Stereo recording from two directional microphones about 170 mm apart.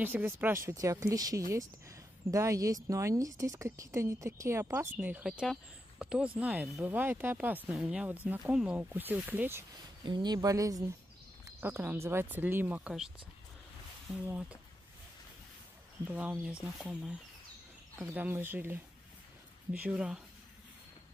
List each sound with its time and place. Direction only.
0.0 s a woman's voice: 10° right (ahead or behind)
10.0 s a woman's voice: 25° right (ahead or behind); by 13.1 s 5° right (ahead or behind)
14.2 s a woman's voice: 10° right (ahead or behind)
16.1 s a woman's voice: 5° right (ahead or behind)